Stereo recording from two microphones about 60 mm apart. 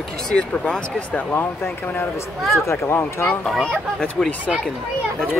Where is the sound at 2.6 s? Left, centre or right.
Left.